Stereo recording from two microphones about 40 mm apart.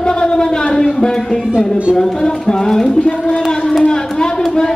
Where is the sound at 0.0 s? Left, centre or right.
Left.